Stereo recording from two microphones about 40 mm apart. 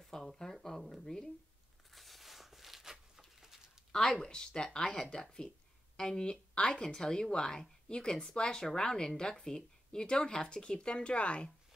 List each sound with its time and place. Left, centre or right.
0.1 s speech: centre
1.9 s a sound: centre
3.9 s speech: centre
4.2 s a woman's voice: left